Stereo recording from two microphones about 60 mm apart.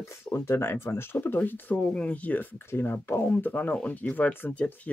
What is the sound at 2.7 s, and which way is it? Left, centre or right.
Speech, left.